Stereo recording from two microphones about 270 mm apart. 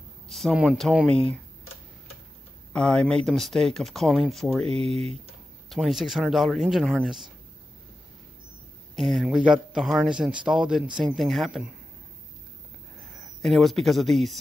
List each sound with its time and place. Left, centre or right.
0.3 s a man's voice: centre
2.7 s a man's voice: centre
4.8 s speech: right
5.7 s a man's voice: centre
8.9 s a man's voice: centre
13.4 s a man's voice: centre